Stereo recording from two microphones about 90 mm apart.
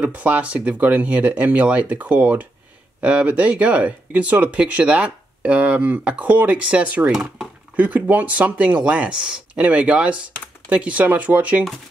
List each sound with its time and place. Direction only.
0.0 s speech: 15° right (ahead or behind)
7.7 s speech: 20° right (ahead or behind)